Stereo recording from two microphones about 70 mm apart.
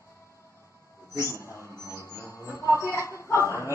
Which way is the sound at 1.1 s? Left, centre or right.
Left.